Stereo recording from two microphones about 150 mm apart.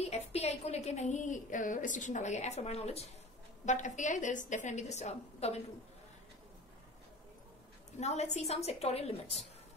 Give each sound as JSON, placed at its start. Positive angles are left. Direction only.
{"t": 0.0, "sound": "a woman's voice", "side_deg": 45}
{"t": 8.0, "sound": "a woman's voice", "side_deg": 50}